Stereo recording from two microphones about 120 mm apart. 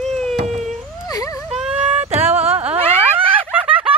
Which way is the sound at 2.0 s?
60° right (ahead or behind).